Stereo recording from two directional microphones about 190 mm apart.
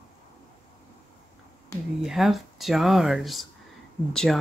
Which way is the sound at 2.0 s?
Centre (ahead or behind).